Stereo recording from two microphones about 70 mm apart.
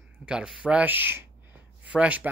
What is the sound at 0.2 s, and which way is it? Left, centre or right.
Speech, centre.